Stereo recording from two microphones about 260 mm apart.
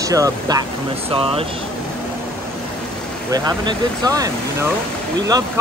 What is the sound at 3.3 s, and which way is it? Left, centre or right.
Speech, centre.